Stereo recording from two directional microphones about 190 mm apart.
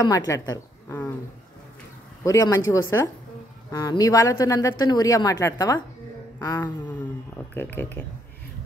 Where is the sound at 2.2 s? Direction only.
20° left (ahead or behind).